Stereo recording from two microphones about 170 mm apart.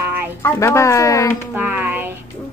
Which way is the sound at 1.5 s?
10° right (ahead or behind).